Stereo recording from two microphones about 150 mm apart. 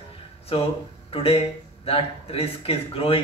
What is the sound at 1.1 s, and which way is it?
Speech, 40° left (ahead or behind).